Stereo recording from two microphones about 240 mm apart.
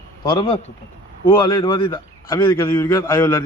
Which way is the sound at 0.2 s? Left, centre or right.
Centre.